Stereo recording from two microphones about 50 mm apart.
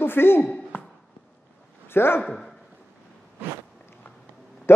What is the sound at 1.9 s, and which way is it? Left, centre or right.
Speech, left.